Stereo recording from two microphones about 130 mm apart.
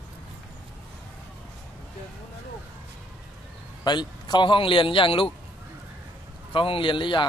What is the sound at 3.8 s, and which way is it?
A man's voice, 35° left (ahead or behind).